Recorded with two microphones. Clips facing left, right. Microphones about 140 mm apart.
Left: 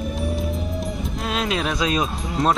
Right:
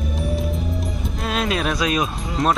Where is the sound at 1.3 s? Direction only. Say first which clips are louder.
Right 2 dB; 20° left (ahead or behind).